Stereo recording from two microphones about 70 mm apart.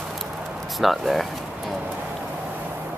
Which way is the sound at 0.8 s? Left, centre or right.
Centre.